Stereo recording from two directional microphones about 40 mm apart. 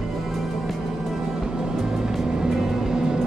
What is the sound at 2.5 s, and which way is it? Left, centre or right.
Vehicle, centre.